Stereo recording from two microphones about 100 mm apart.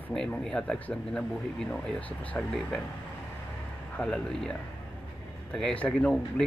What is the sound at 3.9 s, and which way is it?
Speech, 10° left (ahead or behind).